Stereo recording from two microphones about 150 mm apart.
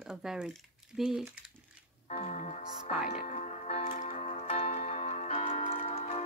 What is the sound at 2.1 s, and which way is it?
Speech, 50° left (ahead or behind).